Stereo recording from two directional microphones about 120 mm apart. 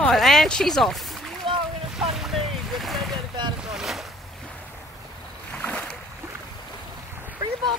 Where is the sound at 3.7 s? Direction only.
Centre (ahead or behind).